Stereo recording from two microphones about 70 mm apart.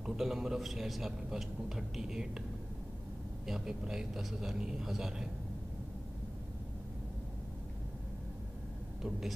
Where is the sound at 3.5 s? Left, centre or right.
Centre.